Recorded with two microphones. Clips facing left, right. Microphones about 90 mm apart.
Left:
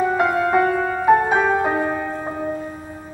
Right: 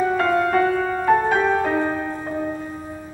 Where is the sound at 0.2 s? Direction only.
15° left (ahead or behind).